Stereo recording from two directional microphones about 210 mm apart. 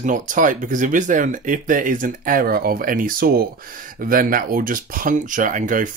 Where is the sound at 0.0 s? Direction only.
40° right (ahead or behind).